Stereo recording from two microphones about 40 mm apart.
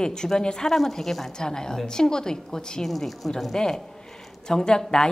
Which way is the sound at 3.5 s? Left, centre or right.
Left.